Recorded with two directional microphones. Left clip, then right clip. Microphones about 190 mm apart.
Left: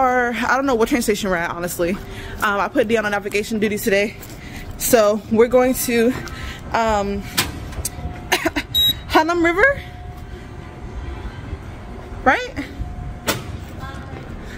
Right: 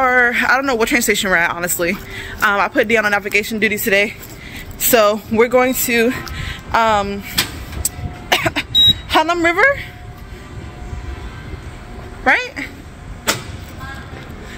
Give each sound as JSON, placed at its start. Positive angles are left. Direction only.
{"t": 0.0, "sound": "speech", "side_deg": 10}
{"t": 7.8, "sound": "vehicle", "side_deg": 15}
{"t": 12.3, "sound": "speech", "side_deg": 25}